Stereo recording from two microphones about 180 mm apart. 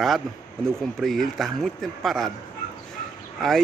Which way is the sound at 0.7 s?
Centre (ahead or behind).